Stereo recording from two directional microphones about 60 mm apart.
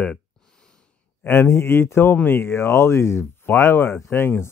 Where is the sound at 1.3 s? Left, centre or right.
Left.